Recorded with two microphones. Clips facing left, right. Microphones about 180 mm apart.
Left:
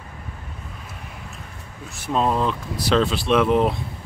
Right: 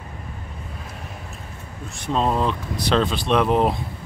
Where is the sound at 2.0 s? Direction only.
Centre (ahead or behind).